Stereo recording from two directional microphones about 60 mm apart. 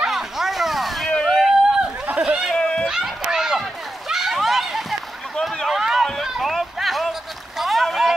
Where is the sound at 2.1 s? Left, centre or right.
Centre.